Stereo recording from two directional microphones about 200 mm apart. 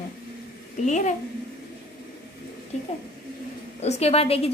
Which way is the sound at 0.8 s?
35° left (ahead or behind).